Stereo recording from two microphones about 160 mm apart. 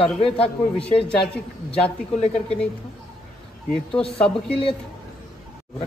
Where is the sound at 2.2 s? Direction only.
40° left (ahead or behind).